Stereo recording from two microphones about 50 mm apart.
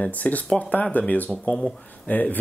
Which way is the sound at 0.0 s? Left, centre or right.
Left.